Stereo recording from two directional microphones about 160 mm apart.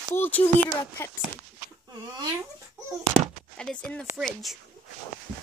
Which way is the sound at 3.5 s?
5° left (ahead or behind).